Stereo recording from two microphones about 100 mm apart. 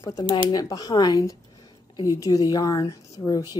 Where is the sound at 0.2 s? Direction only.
45° left (ahead or behind).